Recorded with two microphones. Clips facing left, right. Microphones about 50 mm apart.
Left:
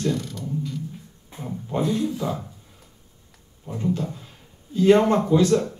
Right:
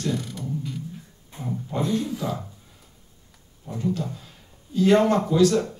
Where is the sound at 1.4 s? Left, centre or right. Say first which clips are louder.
Left 2 dB; centre.